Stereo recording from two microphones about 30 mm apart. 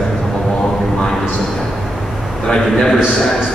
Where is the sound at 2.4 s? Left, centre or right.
Left.